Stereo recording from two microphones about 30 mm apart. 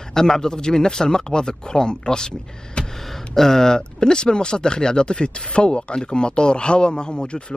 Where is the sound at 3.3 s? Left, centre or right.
Centre.